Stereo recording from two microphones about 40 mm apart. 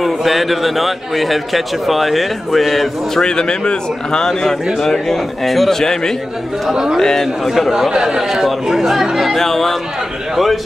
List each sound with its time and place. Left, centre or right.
0.0 s a man's voice: centre
3.2 s speech: centre
6.7 s a man's voice: centre
7.0 s speech: centre
7.4 s a man's voice: centre
7.9 s speech: right
8.2 s a man's voice: centre
9.2 s a man's voice: centre